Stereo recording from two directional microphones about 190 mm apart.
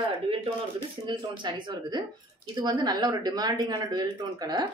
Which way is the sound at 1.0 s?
25° right (ahead or behind).